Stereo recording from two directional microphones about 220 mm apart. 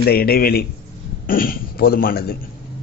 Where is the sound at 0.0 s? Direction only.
45° left (ahead or behind).